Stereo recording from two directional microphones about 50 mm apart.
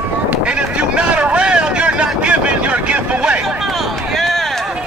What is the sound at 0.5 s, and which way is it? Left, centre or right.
Vehicle, right.